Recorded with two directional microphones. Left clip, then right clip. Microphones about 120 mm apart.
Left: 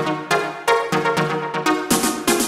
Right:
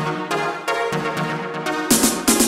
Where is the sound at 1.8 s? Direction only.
Centre (ahead or behind).